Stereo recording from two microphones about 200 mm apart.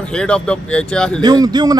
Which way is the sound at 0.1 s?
5° left (ahead or behind).